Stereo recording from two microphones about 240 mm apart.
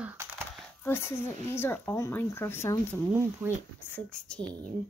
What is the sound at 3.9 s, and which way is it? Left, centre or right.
Speech, centre.